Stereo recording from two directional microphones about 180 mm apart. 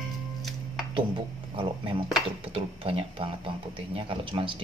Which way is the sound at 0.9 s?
30° right (ahead or behind).